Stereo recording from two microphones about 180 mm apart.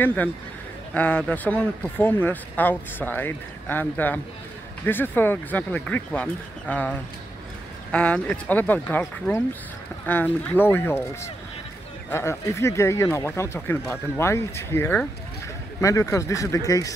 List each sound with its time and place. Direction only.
0.0 s speech: 10° left (ahead or behind)
12.1 s speech: 15° left (ahead or behind)